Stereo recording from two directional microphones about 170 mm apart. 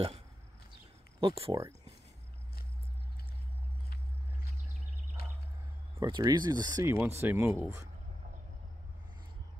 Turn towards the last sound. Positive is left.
turn(degrees=-15)  # may be behind; listen again after turning